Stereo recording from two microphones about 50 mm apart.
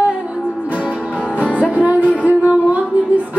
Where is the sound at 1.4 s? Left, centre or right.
Right.